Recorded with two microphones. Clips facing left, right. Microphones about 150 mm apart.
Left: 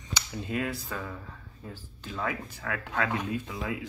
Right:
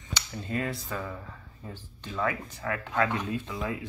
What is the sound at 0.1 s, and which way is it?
Cap gun, 10° left (ahead or behind).